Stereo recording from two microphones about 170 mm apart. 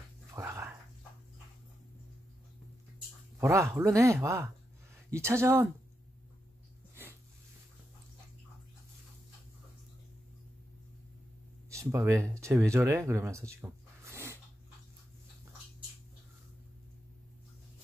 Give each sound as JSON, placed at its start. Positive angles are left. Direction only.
{"t": 0.3, "sound": "dog", "side_deg": -15}
{"t": 3.3, "sound": "speech", "side_deg": -15}
{"t": 11.7, "sound": "speech", "side_deg": -15}